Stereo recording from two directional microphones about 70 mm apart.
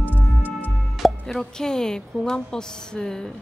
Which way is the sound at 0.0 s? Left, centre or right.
Left.